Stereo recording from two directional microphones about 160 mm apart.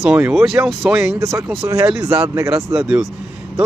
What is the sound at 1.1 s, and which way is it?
Speech, 15° right (ahead or behind).